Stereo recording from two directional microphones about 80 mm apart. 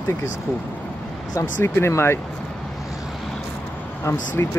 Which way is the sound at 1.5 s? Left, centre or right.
Left.